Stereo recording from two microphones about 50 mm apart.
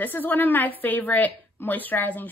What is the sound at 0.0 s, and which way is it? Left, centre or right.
Speech, left.